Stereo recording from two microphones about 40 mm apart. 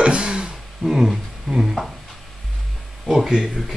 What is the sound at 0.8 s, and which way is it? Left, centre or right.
Speech, centre.